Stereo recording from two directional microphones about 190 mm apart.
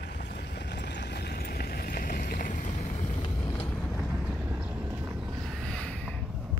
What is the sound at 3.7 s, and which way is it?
Vehicle, 10° left (ahead or behind).